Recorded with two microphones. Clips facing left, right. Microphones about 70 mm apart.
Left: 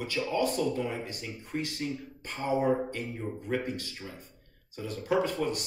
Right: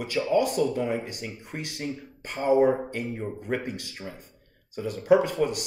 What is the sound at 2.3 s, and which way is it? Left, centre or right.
Speech, right.